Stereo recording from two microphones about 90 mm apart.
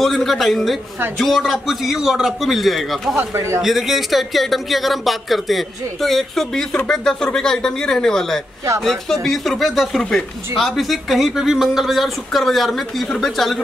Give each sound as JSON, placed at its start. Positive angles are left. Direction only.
{"t": 0.0, "sound": "speech", "side_deg": 0}
{"t": 3.2, "sound": "speech", "side_deg": -30}
{"t": 3.6, "sound": "speech", "side_deg": 0}